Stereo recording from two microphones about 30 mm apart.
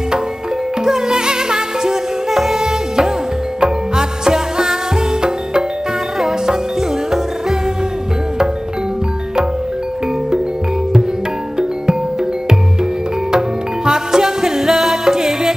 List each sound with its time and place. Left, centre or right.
0.8 s music: centre
2.3 s music: centre
3.6 s music: right
11.5 s music: right
13.8 s music: centre